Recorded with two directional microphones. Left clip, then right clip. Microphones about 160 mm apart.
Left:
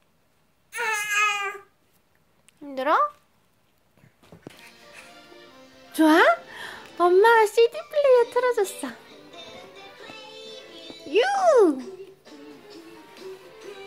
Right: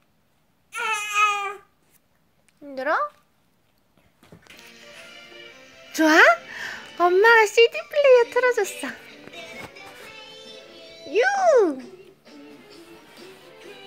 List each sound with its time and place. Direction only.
0.7 s baby cry: 15° left (ahead or behind)
2.6 s a sound: 15° left (ahead or behind)
5.9 s a child's voice: 15° left (ahead or behind)
11.1 s speech: 15° left (ahead or behind)